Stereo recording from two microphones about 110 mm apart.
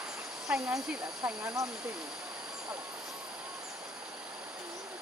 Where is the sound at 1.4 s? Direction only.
35° right (ahead or behind).